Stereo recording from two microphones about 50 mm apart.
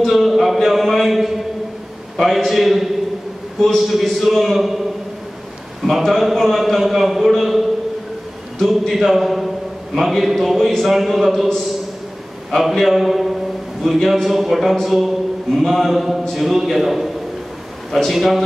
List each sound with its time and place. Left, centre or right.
0.0 s a sound: centre
2.1 s speech: centre
8.8 s speech: centre
12.4 s speech: centre